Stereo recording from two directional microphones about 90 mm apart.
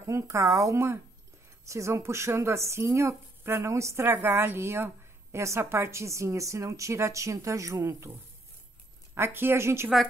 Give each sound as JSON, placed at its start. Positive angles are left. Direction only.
{"t": 0.0, "sound": "a woman's voice", "side_deg": -35}